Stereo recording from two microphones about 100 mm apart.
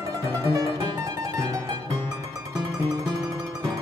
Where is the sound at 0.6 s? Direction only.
35° right (ahead or behind).